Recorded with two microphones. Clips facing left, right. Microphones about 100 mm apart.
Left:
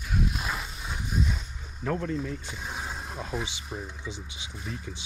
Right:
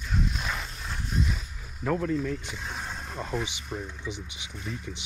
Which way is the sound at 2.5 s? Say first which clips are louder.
Even; 5° left (ahead or behind).